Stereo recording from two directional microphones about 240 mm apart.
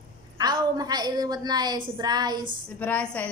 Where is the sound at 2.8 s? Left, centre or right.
Centre.